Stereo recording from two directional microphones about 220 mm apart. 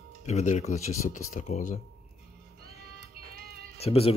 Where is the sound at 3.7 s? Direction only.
25° left (ahead or behind).